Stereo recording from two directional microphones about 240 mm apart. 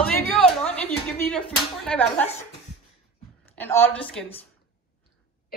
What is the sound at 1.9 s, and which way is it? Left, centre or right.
Speech, centre.